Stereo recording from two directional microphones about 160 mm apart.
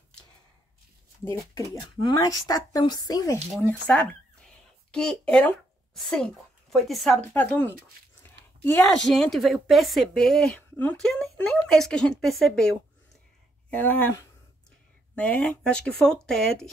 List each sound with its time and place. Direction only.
2.0 s speech: 20° left (ahead or behind)
3.6 s speech: 10° left (ahead or behind)
8.9 s speech: 5° left (ahead or behind)